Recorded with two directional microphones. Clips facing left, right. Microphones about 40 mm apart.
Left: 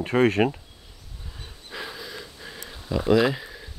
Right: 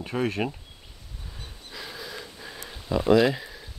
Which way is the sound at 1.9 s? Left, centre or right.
Centre.